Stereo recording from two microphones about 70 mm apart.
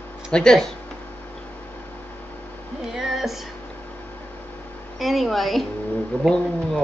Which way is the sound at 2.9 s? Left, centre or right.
Centre.